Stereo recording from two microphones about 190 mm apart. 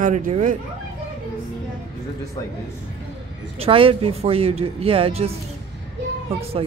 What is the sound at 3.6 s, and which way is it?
Speech, 30° right (ahead or behind).